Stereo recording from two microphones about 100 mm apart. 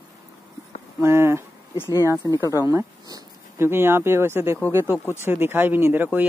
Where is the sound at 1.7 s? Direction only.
25° left (ahead or behind).